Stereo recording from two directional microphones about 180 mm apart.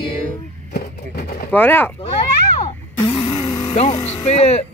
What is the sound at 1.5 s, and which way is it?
Speech, 10° left (ahead or behind).